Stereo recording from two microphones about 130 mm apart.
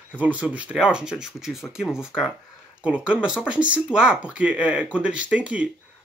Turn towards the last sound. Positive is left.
turn(degrees=-10)  # may be behind; listen again after turning